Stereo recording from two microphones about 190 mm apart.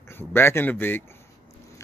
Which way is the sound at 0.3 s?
10° left (ahead or behind).